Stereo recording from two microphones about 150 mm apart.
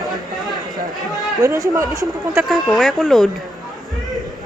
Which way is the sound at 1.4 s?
20° right (ahead or behind).